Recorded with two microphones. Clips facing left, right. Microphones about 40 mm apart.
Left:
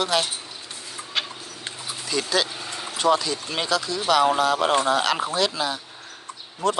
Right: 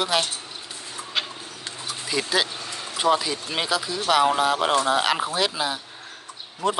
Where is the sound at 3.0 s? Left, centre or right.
Centre.